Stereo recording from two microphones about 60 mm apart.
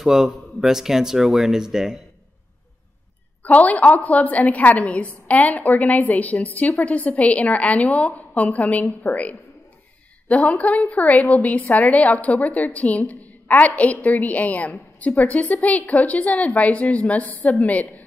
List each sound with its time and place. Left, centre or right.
0.0 s speech: centre
3.4 s a woman's voice: left